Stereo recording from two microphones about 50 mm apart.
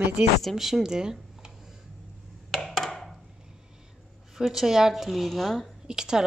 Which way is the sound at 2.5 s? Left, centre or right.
Centre.